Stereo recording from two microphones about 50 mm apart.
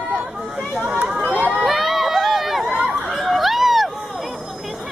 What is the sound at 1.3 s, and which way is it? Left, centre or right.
Crowd, right.